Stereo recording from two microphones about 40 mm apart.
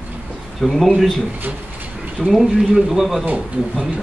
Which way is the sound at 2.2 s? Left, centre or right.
Centre.